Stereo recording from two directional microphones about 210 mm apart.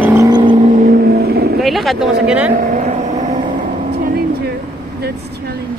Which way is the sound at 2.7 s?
35° right (ahead or behind).